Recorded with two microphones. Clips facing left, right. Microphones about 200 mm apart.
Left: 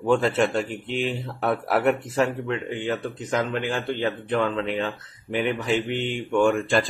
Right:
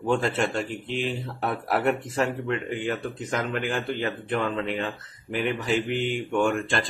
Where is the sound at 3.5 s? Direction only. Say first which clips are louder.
Left 1 dB; 35° left (ahead or behind).